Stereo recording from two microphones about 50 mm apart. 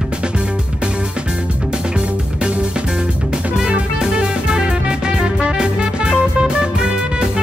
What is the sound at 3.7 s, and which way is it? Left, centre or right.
Music, centre.